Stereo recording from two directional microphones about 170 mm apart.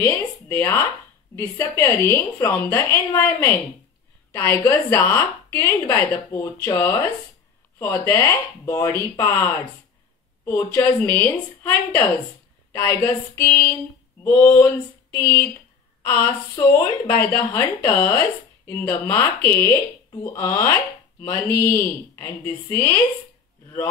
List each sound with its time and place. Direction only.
0.5 s a woman's voice: 10° left (ahead or behind)
10.4 s a woman's voice: 10° left (ahead or behind)